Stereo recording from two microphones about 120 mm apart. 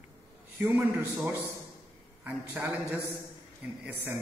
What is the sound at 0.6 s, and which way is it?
Speech, 15° right (ahead or behind).